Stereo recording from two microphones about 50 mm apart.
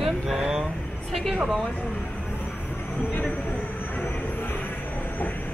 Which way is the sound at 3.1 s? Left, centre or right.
Left.